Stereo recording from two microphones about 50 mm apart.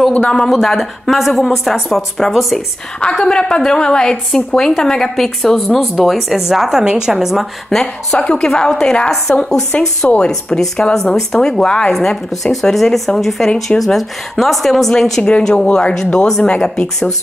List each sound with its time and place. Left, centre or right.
0.3 s a woman's voice: centre
7.7 s a woman's voice: centre; by 10.6 s left
10.8 s a woman's voice: centre